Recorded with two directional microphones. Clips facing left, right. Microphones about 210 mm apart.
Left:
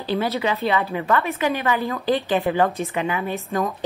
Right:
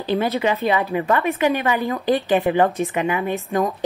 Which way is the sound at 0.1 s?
20° right (ahead or behind).